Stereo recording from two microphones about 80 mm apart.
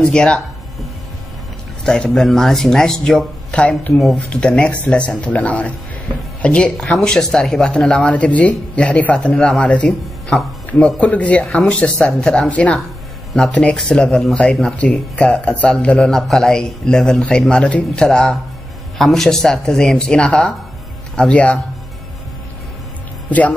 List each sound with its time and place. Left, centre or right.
0.0 s speech: centre
1.9 s speech: centre
3.5 s speech: centre
11.4 s speech: centre
13.7 s speech: centre